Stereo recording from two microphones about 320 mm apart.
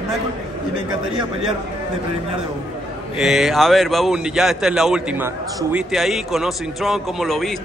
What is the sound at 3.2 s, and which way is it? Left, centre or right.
Speech, centre.